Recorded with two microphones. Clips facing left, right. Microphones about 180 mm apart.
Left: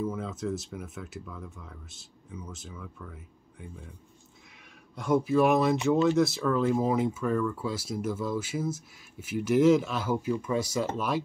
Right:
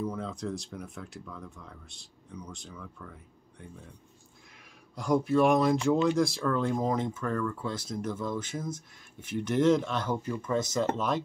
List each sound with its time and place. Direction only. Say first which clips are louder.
0.0 s speech: left 2 dB; 5° left (ahead or behind)
4.9 s speech: left 1 dB; centre (ahead or behind)